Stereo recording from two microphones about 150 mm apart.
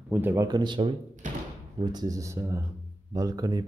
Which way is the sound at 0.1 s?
15° right (ahead or behind).